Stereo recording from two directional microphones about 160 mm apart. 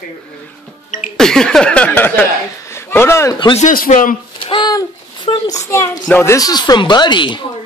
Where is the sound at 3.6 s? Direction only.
50° left (ahead or behind).